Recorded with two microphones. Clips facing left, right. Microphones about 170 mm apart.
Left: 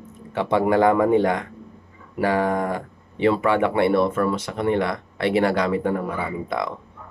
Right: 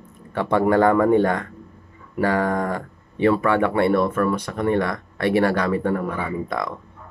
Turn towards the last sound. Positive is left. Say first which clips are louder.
# even
turn(degrees=20)  # may be behind; listen again after turning